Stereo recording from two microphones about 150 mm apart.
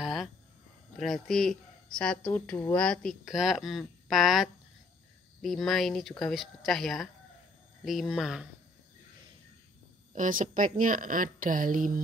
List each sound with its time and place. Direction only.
0.0 s a sound: centre (ahead or behind)
0.9 s speech: centre (ahead or behind)
10.1 s a woman's voice: 60° right (ahead or behind)